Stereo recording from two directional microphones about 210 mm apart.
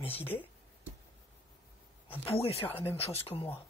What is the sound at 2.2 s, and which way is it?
Speech, 30° left (ahead or behind).